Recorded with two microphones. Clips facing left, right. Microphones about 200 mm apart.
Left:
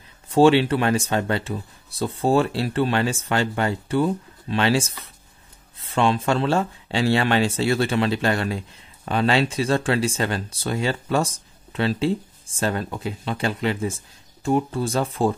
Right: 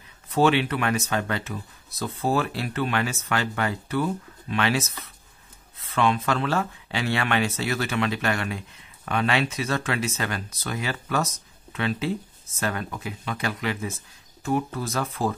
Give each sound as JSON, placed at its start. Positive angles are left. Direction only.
{"t": 0.3, "sound": "speech", "side_deg": 30}